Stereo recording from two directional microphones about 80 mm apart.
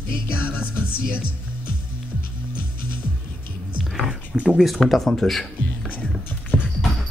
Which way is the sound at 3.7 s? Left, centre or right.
Centre.